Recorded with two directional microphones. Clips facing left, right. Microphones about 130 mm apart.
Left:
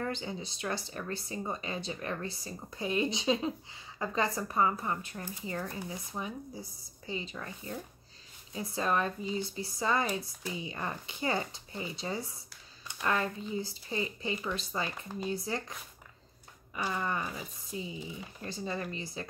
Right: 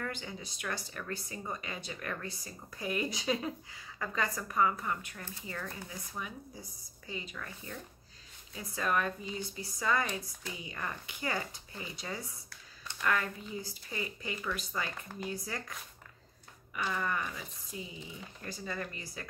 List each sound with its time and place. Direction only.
0.0 s speech: 25° left (ahead or behind)
5.2 s speech: 15° left (ahead or behind)
5.6 s speech: 25° left (ahead or behind)
16.9 s speech: 25° left (ahead or behind)